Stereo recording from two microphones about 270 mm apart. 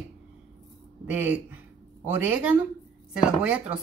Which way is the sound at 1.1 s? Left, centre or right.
Centre.